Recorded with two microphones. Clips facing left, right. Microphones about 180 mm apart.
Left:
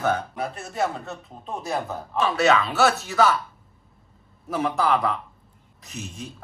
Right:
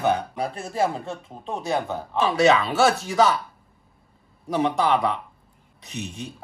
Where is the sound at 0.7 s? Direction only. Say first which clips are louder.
Right 3 dB; 30° right (ahead or behind).